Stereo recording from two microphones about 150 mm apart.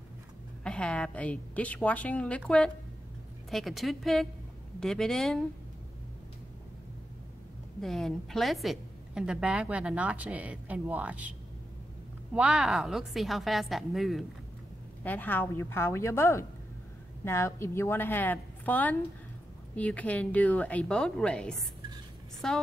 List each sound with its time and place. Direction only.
0.7 s a woman's voice: 5° left (ahead or behind)
3.4 s a woman's voice: centre (ahead or behind)
7.8 s a woman's voice: centre (ahead or behind)
12.4 s a woman's voice: 5° right (ahead or behind)
15.0 s a woman's voice: 10° left (ahead or behind)